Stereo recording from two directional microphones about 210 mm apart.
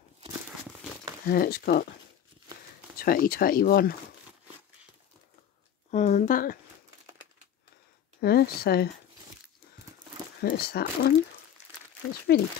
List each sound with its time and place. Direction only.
1.2 s speech: 45° left (ahead or behind)
3.0 s speech: 45° left (ahead or behind)
5.9 s speech: 35° left (ahead or behind)
8.2 s speech: 50° left (ahead or behind)
10.4 s speech: 50° left (ahead or behind)
12.3 s speech: 50° left (ahead or behind)